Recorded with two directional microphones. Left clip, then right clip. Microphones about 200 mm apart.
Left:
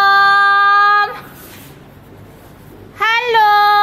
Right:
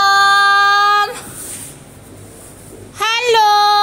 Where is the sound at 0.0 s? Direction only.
5° right (ahead or behind).